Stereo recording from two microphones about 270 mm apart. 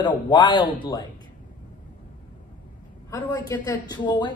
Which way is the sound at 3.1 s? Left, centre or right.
Centre.